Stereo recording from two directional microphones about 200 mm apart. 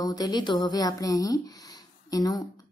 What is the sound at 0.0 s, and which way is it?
A woman's voice, 20° left (ahead or behind).